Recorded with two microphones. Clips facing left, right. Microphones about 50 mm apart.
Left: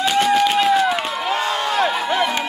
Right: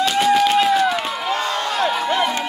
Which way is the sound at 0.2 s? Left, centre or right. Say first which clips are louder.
Right 1 dB; centre.